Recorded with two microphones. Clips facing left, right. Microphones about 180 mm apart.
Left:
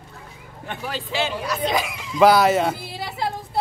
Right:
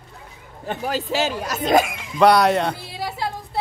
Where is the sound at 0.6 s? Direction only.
40° right (ahead or behind).